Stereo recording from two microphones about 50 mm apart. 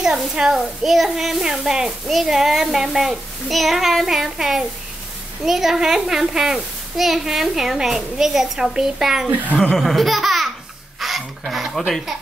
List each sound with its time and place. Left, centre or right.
0.0 s a child's voice: centre
9.8 s laughter: centre
11.0 s a sound: centre